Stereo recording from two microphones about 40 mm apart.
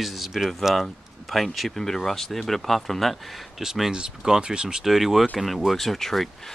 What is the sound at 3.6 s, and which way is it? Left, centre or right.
Speech, centre.